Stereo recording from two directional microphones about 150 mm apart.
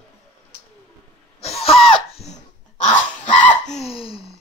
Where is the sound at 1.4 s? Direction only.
40° left (ahead or behind).